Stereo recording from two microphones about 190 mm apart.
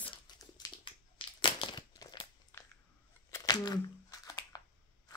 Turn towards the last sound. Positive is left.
turn(degrees=20)  # may be behind; listen again after turning